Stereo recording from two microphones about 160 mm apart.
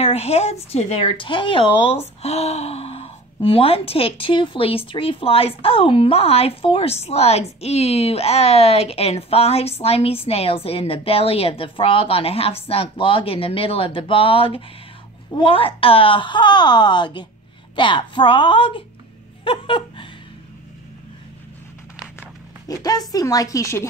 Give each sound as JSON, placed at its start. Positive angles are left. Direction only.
{"t": 0.0, "sound": "a woman's voice", "side_deg": 40}
{"t": 19.4, "sound": "laughter", "side_deg": 35}
{"t": 22.7, "sound": "a woman's voice", "side_deg": 25}